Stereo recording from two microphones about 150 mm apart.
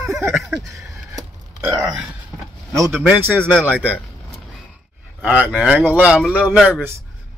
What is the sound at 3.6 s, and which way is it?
Speech, 10° right (ahead or behind).